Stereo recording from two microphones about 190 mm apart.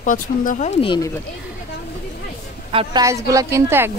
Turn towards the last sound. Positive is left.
turn(degrees=-15)  # may be behind; listen again after turning